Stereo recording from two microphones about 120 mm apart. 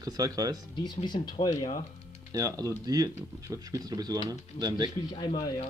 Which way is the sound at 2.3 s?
30° right (ahead or behind).